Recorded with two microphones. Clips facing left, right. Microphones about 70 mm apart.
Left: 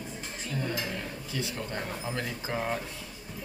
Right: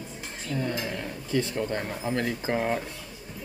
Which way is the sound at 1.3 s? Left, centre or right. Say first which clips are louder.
Right 9 dB; right.